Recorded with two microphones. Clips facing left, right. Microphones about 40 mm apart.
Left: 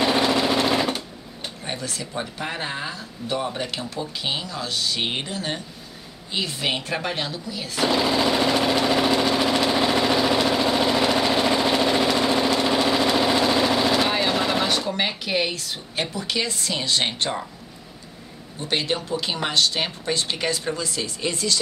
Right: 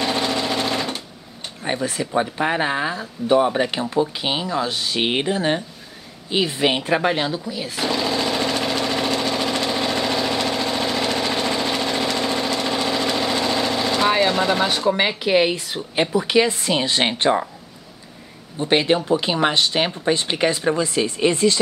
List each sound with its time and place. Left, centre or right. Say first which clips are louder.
0.0 s sewing machine: left 2 dB; centre
1.6 s speech: right 8 dB; right
7.8 s sewing machine: left 2 dB; centre
14.2 s a sound: right 3 dB; centre
14.9 s speech: right 7 dB; centre
18.6 s speech: right 7 dB; right